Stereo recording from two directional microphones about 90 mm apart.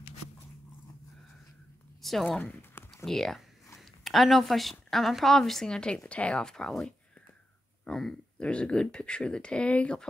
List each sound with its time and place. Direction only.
2.0 s speech: centre (ahead or behind)
2.4 s a sound: 25° left (ahead or behind)
3.1 s a woman's voice: 5° left (ahead or behind)